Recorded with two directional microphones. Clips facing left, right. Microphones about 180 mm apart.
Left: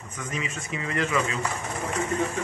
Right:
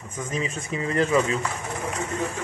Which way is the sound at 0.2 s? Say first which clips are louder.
Right 4 dB; 35° right (ahead or behind).